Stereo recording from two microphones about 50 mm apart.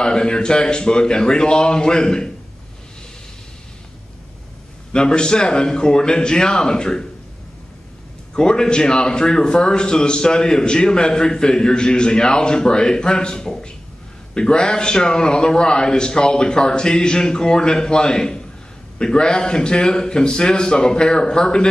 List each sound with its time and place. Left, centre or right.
0.0 s a man's voice: centre
4.9 s a man's voice: centre
8.4 s a man's voice: centre